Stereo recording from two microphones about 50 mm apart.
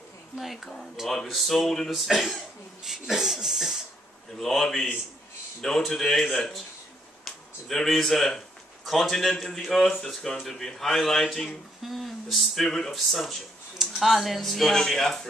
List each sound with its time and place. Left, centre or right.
0.4 s speech: centre
4.4 s speech: centre